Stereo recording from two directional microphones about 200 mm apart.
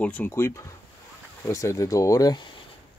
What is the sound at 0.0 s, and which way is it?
Speech, 10° left (ahead or behind).